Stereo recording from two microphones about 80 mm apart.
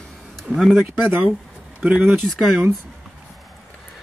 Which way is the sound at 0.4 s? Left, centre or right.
Centre.